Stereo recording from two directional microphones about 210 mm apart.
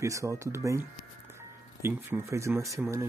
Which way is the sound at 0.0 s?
15° right (ahead or behind).